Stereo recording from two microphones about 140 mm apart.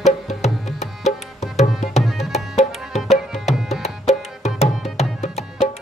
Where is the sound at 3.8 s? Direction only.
50° left (ahead or behind).